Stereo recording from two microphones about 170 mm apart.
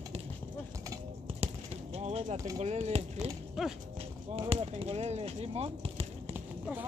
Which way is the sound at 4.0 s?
35° right (ahead or behind).